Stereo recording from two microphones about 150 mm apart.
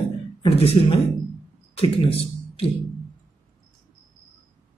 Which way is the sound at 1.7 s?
40° left (ahead or behind).